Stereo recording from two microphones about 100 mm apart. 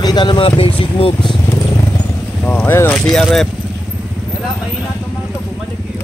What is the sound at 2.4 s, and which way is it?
Speech, 20° left (ahead or behind).